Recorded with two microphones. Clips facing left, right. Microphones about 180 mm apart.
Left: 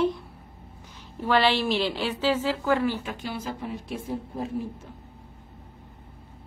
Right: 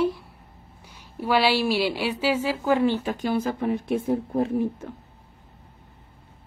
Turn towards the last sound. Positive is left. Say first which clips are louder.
# right 7 dB
turn(degrees=-60)  # may be behind; listen again after turning